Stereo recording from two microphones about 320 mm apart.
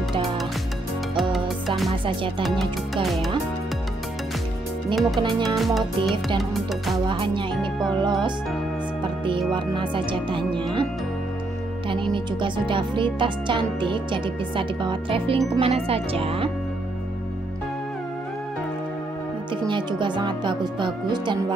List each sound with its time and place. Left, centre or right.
2.0 s speech: centre
2.6 s speech: centre
4.9 s speech: centre
7.1 s speech: centre
9.5 s speech: centre
11.9 s speech: centre
19.7 s speech: centre